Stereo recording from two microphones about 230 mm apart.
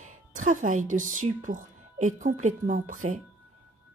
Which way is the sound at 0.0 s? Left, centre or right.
Right.